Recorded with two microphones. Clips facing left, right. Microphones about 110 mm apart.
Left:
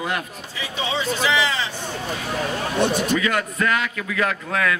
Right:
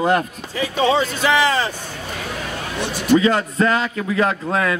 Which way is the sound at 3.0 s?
30° right (ahead or behind).